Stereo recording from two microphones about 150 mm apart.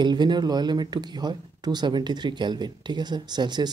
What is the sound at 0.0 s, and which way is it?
Speech, 30° right (ahead or behind).